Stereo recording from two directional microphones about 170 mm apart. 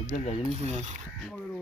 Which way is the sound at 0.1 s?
40° left (ahead or behind).